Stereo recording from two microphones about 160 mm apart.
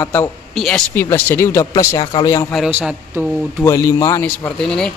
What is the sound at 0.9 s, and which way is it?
Speech, 15° left (ahead or behind).